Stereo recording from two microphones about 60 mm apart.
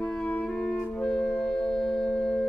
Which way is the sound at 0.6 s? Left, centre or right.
Centre.